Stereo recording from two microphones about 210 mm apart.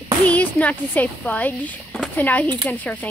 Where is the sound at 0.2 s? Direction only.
10° left (ahead or behind).